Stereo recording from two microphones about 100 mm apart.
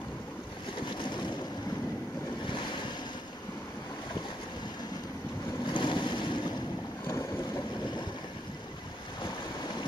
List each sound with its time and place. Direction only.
5.7 s boat: 50° left (ahead or behind)